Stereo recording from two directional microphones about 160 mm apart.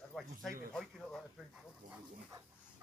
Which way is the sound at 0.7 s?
Centre (ahead or behind).